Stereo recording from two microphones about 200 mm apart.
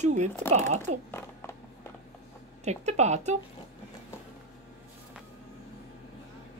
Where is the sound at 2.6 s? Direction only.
35° right (ahead or behind).